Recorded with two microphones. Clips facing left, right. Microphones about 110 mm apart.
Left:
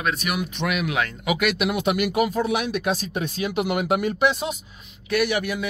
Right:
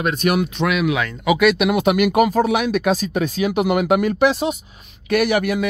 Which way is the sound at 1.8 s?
65° right (ahead or behind).